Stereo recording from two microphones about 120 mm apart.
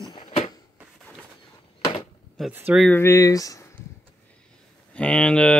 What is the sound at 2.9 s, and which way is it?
Speech, 25° left (ahead or behind).